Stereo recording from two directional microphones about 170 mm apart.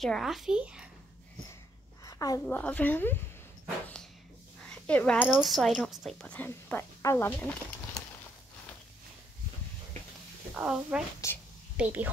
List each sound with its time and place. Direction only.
0.0 s speech: centre (ahead or behind)
2.0 s a sound: 20° left (ahead or behind)
2.4 s a woman's voice: 10° left (ahead or behind)
4.6 s a woman's voice: 5° left (ahead or behind)
10.5 s speech: 5° right (ahead or behind)
11.2 s a woman's voice: 15° left (ahead or behind)
11.7 s a woman's voice: 10° right (ahead or behind)